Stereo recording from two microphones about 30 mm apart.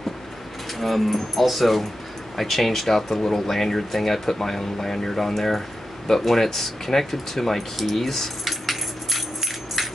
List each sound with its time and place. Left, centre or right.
0.7 s speech: centre